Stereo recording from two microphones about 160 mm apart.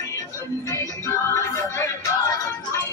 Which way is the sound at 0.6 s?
15° left (ahead or behind).